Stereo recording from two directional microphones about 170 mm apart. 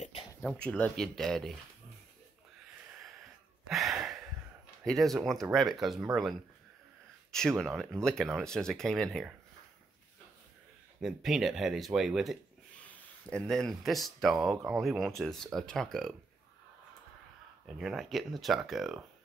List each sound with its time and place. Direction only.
0.4 s speech: 5° left (ahead or behind)
3.6 s a sound: centre (ahead or behind)
4.8 s speech: centre (ahead or behind)
7.2 s speech: centre (ahead or behind)
11.0 s speech: centre (ahead or behind)
17.6 s speech: centre (ahead or behind)